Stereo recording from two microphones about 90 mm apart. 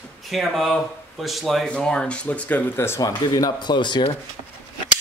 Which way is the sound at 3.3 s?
45° left (ahead or behind).